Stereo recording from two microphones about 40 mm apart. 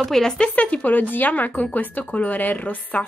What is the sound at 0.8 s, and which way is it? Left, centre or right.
A woman's voice, left.